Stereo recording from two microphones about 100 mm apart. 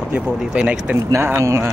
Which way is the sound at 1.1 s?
25° right (ahead or behind).